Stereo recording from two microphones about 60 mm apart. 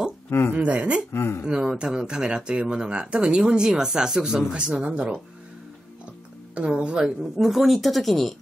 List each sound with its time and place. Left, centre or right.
0.3 s speech: left
0.6 s speech: right
1.1 s speech: left
1.4 s speech: centre
6.5 s speech: centre